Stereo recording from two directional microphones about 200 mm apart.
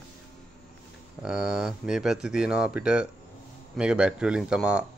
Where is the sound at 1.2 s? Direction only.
5° right (ahead or behind).